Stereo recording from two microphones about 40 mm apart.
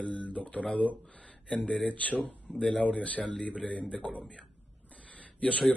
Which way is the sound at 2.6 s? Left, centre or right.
Left.